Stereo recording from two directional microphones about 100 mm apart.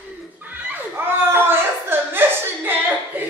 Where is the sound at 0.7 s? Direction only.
20° right (ahead or behind).